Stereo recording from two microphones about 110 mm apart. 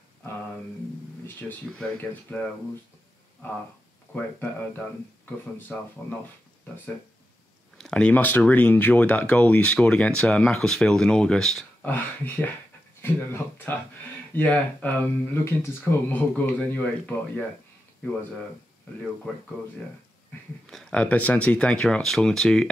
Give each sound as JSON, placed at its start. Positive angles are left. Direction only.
{"t": 1.2, "sound": "speech", "side_deg": 10}
{"t": 4.1, "sound": "speech", "side_deg": 15}
{"t": 7.7, "sound": "speech", "side_deg": 5}
{"t": 11.8, "sound": "speech", "side_deg": 15}
{"t": 20.6, "sound": "speech", "side_deg": 5}